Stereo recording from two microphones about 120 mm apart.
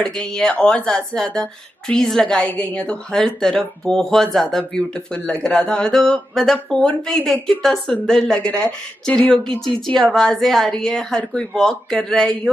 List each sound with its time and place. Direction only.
0.0 s speech: 5° left (ahead or behind)